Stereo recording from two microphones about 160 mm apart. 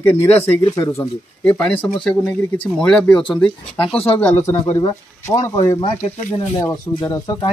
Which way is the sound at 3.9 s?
35° left (ahead or behind).